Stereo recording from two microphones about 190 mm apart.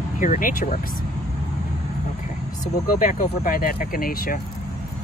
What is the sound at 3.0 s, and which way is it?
Speech, 45° left (ahead or behind).